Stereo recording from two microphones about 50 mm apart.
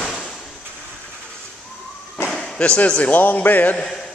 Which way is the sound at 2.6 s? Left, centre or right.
Left.